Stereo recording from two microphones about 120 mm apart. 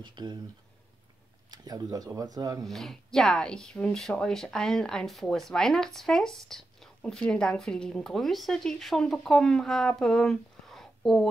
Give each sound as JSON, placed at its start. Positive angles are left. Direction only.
{"t": 0.0, "sound": "speech", "side_deg": -35}
{"t": 1.5, "sound": "speech", "side_deg": -35}
{"t": 2.6, "sound": "a woman's voice", "side_deg": 0}